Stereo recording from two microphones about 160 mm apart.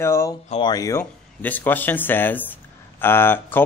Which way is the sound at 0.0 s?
15° left (ahead or behind).